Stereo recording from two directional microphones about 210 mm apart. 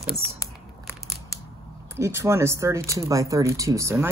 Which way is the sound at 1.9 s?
10° right (ahead or behind).